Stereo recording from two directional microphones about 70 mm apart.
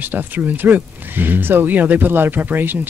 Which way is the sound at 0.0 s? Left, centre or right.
Right.